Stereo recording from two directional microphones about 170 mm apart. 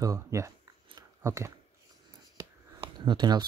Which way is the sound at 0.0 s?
20° right (ahead or behind).